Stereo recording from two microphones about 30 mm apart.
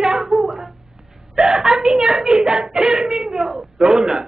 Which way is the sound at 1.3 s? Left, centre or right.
Centre.